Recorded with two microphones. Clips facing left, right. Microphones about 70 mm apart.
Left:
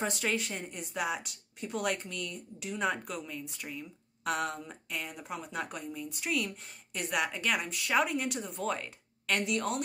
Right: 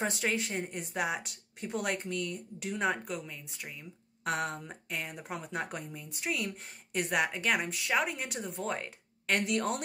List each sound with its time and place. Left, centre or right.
0.0 s speech: right
3.1 s speech: centre
4.2 s speech: right
6.9 s speech: right